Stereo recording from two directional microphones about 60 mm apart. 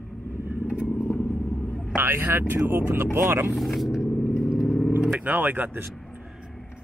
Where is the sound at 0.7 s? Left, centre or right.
Left.